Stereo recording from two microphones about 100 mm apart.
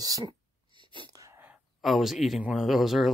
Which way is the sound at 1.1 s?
35° right (ahead or behind).